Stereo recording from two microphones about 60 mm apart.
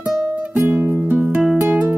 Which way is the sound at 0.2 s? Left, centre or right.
Right.